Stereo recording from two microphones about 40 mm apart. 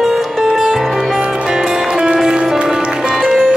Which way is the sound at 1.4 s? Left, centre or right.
Centre.